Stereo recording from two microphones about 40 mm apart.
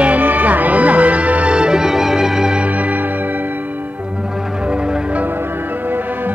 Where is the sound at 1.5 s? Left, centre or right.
Right.